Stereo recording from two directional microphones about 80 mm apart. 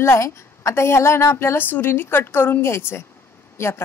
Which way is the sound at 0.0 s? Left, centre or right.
Left.